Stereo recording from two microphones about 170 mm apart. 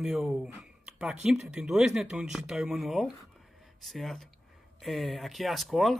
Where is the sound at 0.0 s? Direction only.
Centre (ahead or behind).